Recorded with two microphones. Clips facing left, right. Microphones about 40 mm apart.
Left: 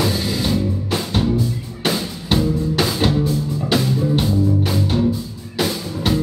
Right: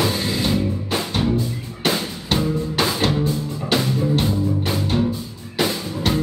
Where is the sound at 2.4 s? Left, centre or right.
Centre.